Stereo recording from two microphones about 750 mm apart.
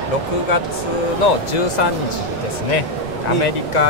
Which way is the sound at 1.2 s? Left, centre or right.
Left.